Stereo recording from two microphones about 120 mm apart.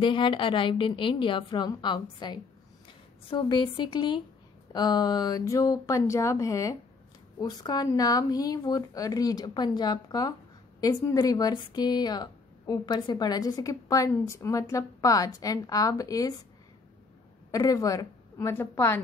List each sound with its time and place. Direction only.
0.0 s a woman's voice: 40° left (ahead or behind)
17.5 s a woman's voice: 30° left (ahead or behind)